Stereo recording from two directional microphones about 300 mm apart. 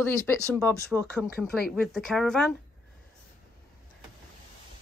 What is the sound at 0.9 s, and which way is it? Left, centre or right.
Speech, centre.